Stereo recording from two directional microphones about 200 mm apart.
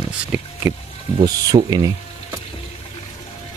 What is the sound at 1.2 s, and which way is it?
Speech, 20° right (ahead or behind).